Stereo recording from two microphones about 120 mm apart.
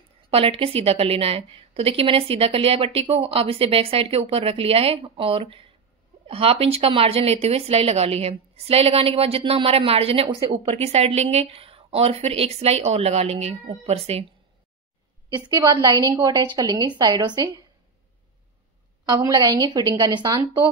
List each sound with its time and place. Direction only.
0.3 s a woman's voice: 50° right (ahead or behind)
15.3 s a woman's voice: 30° right (ahead or behind)
19.1 s a woman's voice: 35° right (ahead or behind)